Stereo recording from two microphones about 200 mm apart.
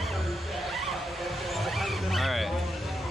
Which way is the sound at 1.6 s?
Centre (ahead or behind).